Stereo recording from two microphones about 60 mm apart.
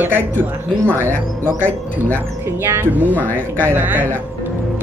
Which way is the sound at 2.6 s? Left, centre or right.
Right.